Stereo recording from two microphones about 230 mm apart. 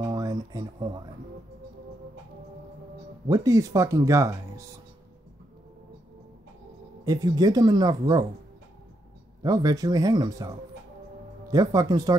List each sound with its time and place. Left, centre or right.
0.0 s a sound: centre
3.3 s speech: centre
7.1 s speech: centre
9.4 s speech: centre